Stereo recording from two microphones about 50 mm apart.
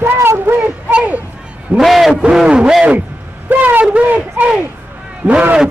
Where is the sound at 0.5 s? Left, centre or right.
Right.